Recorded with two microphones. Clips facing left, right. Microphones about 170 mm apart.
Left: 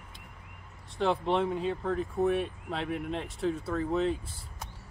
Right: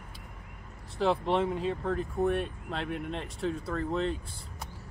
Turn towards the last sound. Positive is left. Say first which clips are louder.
# left 2 dB
turn(degrees=0)  # may be behind; listen again after turning